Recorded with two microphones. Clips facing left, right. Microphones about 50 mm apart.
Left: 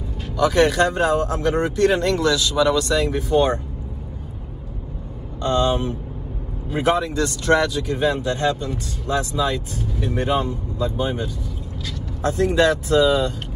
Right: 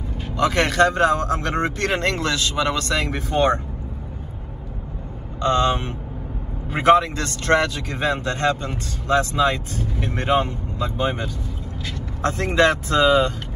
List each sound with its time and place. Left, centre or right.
0.3 s speech: right
5.4 s speech: right